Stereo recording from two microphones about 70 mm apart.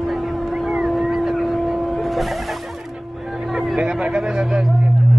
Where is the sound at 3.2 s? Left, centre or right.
Centre.